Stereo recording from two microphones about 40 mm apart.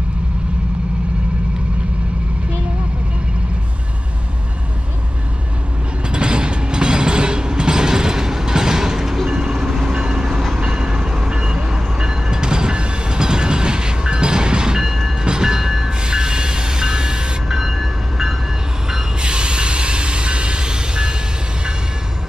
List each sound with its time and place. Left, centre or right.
6.0 s train: right
16.0 s train: right
17.5 s train: centre; by 21.2 s right